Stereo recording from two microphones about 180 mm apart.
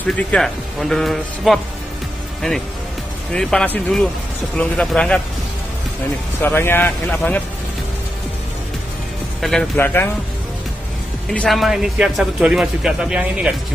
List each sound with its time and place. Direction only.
0.0 s speech: 5° left (ahead or behind)
3.3 s speech: 5° left (ahead or behind)
6.4 s speech: 10° left (ahead or behind)
9.4 s speech: 5° left (ahead or behind)
11.2 s speech: 5° left (ahead or behind)